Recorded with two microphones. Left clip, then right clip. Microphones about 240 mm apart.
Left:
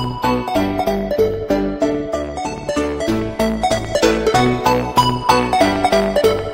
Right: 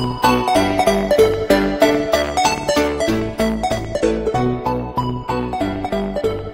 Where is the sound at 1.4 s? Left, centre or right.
Centre.